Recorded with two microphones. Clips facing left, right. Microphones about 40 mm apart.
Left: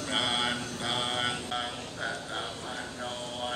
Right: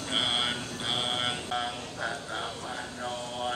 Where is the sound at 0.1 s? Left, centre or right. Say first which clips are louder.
Right 1 dB; right.